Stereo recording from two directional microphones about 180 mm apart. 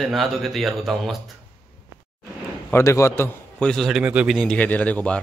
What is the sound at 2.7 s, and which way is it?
A man's voice, 15° left (ahead or behind).